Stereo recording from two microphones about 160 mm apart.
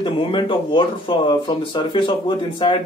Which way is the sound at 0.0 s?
30° left (ahead or behind).